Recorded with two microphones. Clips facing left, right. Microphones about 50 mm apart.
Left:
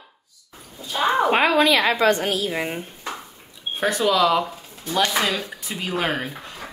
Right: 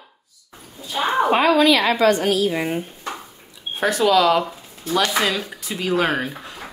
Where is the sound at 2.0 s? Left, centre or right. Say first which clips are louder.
Right 2 dB; left.